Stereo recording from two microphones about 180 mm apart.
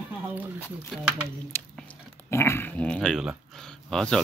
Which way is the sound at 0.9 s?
Centre (ahead or behind).